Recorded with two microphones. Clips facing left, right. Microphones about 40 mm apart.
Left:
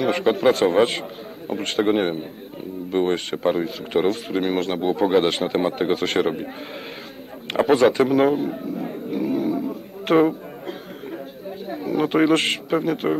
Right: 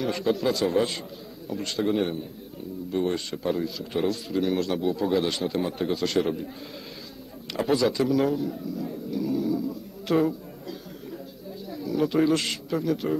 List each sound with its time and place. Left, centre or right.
0.1 s speech: left
7.6 s a sound: left
11.7 s speech: left